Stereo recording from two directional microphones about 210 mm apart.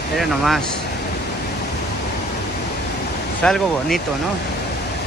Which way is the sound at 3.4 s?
Centre (ahead or behind).